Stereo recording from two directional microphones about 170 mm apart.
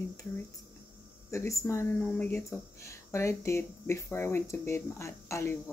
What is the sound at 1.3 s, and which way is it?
Speech, 15° left (ahead or behind).